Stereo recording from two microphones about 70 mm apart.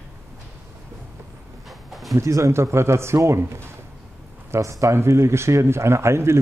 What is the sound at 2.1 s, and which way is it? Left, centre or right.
A man's voice, right.